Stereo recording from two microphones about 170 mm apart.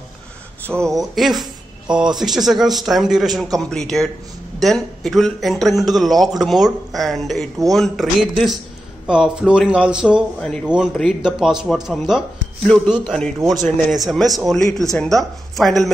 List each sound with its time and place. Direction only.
0.7 s a man's voice: centre (ahead or behind)